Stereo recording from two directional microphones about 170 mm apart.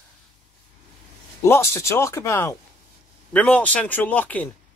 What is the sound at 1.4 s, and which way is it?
Speech, 15° left (ahead or behind).